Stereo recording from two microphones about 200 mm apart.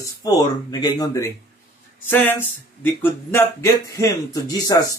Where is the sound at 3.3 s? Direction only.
10° left (ahead or behind).